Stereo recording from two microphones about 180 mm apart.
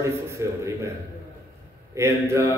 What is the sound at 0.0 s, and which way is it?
Speech, 15° right (ahead or behind).